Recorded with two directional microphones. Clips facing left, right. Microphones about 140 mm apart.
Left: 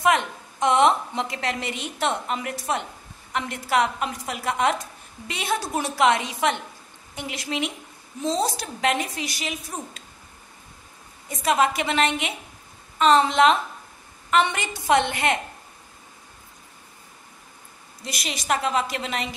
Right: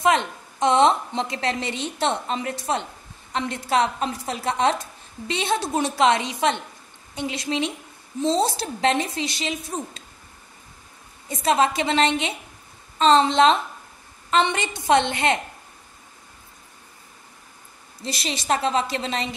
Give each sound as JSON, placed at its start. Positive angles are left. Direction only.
{"t": 0.0, "sound": "a woman's voice", "side_deg": -25}
{"t": 11.2, "sound": "a woman's voice", "side_deg": -30}
{"t": 18.0, "sound": "a woman's voice", "side_deg": -30}